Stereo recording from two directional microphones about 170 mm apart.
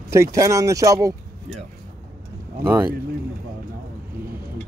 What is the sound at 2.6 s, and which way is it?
Speech, 15° right (ahead or behind).